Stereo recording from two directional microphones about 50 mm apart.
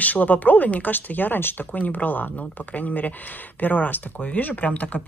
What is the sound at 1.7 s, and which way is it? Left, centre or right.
Speech, left.